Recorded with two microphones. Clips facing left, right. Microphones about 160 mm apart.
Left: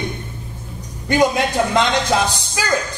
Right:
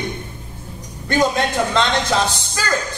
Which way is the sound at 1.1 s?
15° left (ahead or behind).